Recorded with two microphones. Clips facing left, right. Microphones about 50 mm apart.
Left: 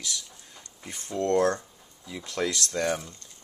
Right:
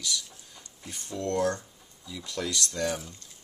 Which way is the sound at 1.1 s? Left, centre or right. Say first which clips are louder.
Left 4 dB; left.